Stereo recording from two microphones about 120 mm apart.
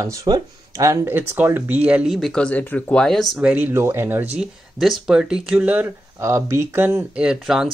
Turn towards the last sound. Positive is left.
turn(degrees=-5)  # may be behind; listen again after turning